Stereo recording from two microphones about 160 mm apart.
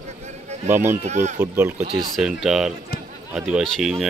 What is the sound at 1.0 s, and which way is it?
Speech, 45° right (ahead or behind).